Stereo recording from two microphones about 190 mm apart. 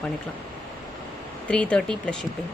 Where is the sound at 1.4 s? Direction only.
5° left (ahead or behind).